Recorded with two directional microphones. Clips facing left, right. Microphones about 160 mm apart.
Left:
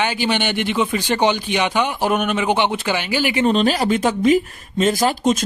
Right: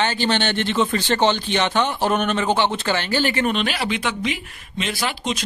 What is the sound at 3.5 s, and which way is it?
Speech, 35° left (ahead or behind).